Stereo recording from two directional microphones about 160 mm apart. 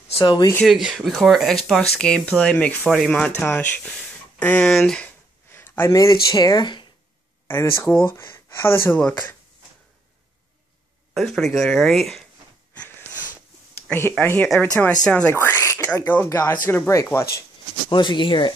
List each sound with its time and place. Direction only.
0.2 s speech: 25° left (ahead or behind)
0.7 s speech: centre (ahead or behind)
5.5 s a sound: 15° left (ahead or behind)
6.3 s speech: 25° left (ahead or behind)
7.4 s speech: 15° left (ahead or behind)
11.1 s speech: centre (ahead or behind)
13.8 s a sound: 15° left (ahead or behind)
14.2 s speech: 10° left (ahead or behind)
17.8 s speech: 30° left (ahead or behind)